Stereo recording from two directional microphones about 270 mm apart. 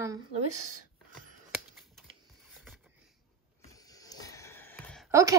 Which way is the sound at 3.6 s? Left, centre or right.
Centre.